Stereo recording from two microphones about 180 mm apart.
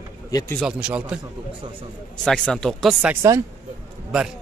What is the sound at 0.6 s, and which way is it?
Speech, 5° right (ahead or behind).